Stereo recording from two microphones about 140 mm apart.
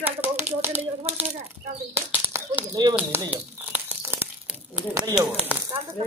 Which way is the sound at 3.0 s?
10° right (ahead or behind).